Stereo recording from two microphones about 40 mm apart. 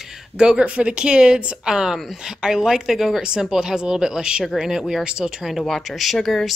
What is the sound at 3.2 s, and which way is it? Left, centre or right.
Speech, right.